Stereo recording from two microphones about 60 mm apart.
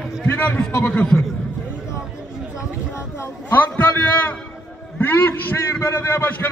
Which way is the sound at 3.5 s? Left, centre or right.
Left.